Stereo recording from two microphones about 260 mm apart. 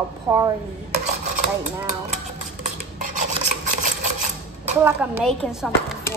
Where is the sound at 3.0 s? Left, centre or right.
Right.